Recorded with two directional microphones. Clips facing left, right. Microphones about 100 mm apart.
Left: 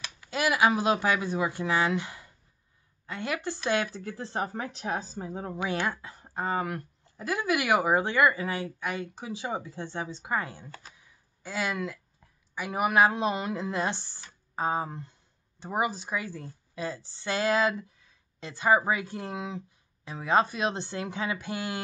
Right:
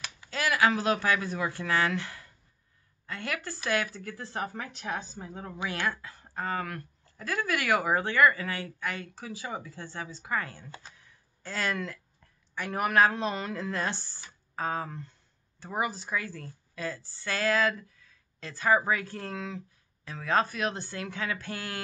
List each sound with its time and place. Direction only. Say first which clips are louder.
0.3 s speech: left 2 dB; 20° left (ahead or behind)
10.9 s a sound: even; 10° left (ahead or behind)
12.5 s speech: left 1 dB; 10° left (ahead or behind)